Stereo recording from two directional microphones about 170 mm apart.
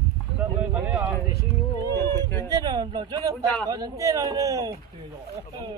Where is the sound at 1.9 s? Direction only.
15° left (ahead or behind).